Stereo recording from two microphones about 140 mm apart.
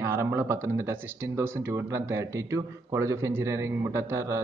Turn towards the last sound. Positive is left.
turn(degrees=-20)  # may be behind; listen again after turning